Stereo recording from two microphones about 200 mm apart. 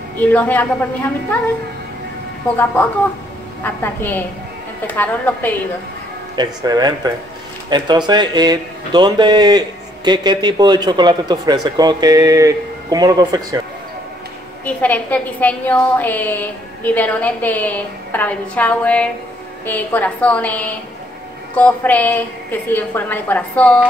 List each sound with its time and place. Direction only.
0.2 s a woman's voice: 10° left (ahead or behind)
2.5 s a woman's voice: 10° left (ahead or behind)
6.3 s speech: 20° right (ahead or behind)
14.6 s a woman's voice: 5° left (ahead or behind)